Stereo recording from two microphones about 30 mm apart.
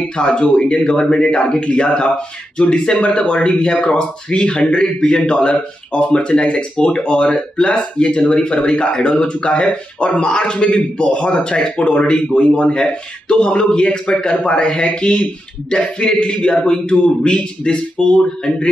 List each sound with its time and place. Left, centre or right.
0.2 s a man's voice: left
1.6 s speech: left
3.4 s speech: left
12.4 s a man's voice: left
17.0 s speech: left